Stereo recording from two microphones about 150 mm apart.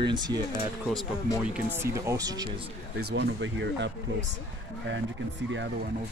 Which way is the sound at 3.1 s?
90° right.